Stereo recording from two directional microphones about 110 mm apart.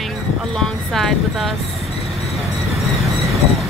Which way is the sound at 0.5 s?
5° left (ahead or behind).